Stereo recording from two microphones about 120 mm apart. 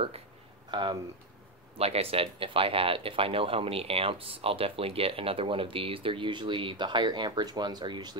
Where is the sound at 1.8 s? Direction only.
55° right (ahead or behind); by 8.1 s 40° right (ahead or behind).